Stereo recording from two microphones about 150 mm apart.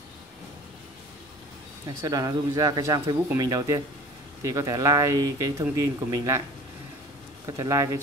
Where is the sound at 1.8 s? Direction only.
25° right (ahead or behind).